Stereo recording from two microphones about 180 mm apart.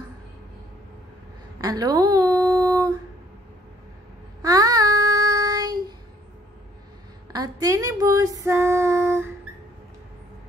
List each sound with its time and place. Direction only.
1.6 s a sound: 20° right (ahead or behind)
4.4 s child singing: 20° right (ahead or behind)
7.3 s female singing: 20° right (ahead or behind)